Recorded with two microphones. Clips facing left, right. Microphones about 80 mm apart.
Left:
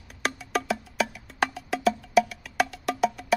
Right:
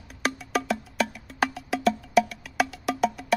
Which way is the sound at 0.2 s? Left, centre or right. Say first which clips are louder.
Right 1 dB; centre.